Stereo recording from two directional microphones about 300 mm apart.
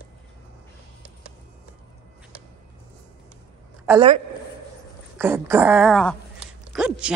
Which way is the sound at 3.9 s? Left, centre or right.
Centre.